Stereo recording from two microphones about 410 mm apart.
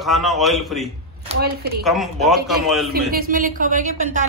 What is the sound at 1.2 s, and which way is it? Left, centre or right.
Speech, right.